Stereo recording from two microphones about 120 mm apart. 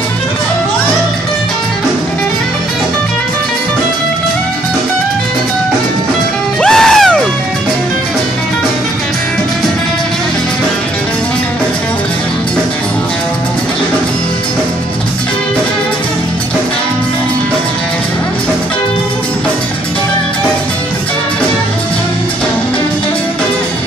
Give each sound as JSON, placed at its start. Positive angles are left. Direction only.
{"t": 6.6, "sound": "music", "side_deg": 5}